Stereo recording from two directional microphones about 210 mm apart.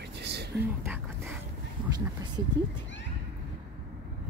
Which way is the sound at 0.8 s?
10° right (ahead or behind).